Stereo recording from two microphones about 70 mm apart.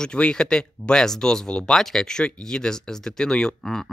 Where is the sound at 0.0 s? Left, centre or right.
Centre.